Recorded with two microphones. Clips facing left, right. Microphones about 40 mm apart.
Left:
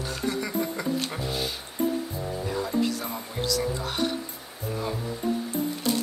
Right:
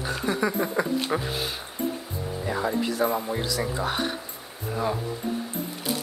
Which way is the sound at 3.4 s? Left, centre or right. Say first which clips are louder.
Even; centre.